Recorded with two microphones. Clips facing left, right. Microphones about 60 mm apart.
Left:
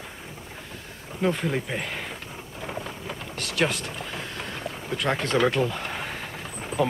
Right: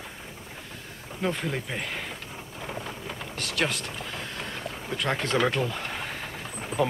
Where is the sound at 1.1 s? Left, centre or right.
Centre.